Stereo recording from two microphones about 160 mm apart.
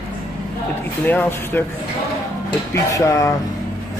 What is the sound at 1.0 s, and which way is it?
Speech, 10° left (ahead or behind).